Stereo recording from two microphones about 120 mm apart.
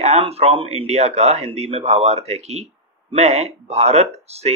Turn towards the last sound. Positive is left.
turn(degrees=-60)  # may be behind; listen again after turning